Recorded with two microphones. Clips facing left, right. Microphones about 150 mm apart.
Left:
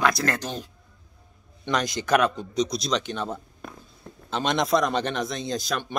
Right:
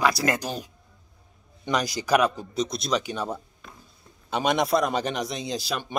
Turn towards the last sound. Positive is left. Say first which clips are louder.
# left 1 dB
turn(degrees=-10)  # may be behind; listen again after turning